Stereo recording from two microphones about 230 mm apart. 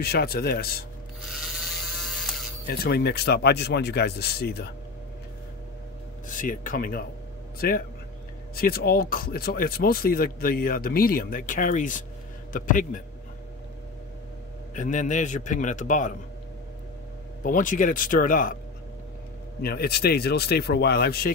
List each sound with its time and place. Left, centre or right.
0.0 s speech: left
1.4 s electric shaver: centre
2.8 s speech: left
6.2 s speech: left
14.7 s speech: left
17.4 s speech: left
19.6 s speech: left